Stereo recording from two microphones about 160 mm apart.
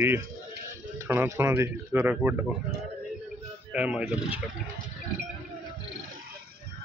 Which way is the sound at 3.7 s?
5° right (ahead or behind).